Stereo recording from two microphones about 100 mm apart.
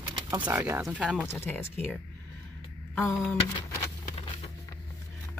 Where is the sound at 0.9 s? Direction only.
15° right (ahead or behind).